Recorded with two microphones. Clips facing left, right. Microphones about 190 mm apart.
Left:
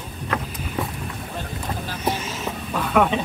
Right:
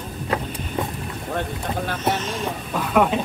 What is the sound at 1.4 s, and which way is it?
Boat, 60° right (ahead or behind).